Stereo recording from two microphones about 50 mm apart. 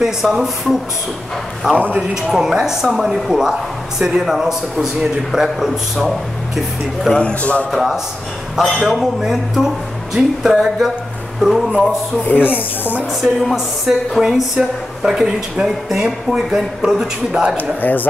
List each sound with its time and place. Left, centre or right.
0.0 s a man's voice: centre
7.2 s a man's voice: left
7.7 s a man's voice: centre
13.2 s a man's voice: centre
17.6 s speech: left